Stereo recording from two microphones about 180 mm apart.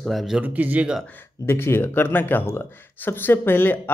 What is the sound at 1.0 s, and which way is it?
Speech, 15° left (ahead or behind).